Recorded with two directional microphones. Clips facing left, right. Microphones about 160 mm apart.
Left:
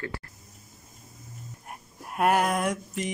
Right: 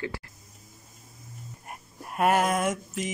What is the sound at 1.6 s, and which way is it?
Dog, centre (ahead or behind).